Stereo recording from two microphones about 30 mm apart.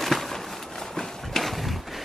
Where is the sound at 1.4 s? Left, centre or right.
Centre.